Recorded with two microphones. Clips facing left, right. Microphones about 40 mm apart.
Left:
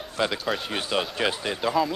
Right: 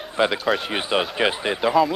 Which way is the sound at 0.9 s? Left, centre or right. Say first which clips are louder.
Right 5 dB; right.